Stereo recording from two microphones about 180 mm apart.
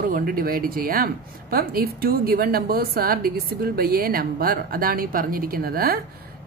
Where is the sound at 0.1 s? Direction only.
50° right (ahead or behind).